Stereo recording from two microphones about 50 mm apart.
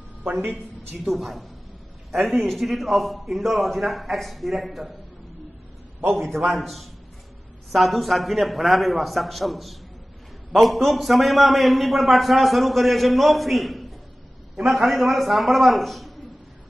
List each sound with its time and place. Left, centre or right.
0.5 s a man's voice: centre
6.5 s a man's voice: centre